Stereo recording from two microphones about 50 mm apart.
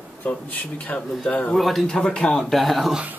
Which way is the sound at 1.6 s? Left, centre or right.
Centre.